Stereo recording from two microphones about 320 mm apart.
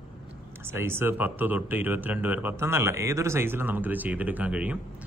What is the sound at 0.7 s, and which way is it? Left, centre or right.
Speech, centre.